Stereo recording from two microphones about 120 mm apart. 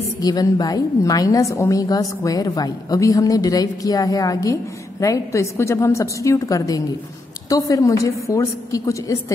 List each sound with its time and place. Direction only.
0.2 s a woman's voice: 30° left (ahead or behind)